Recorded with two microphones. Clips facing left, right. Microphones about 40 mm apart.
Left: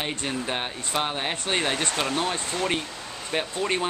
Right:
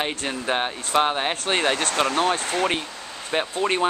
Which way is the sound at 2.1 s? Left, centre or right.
Right.